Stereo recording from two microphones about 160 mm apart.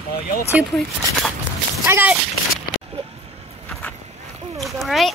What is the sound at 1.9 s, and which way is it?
Speech, 10° right (ahead or behind).